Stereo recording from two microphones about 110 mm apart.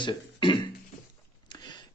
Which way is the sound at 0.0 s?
45° left (ahead or behind).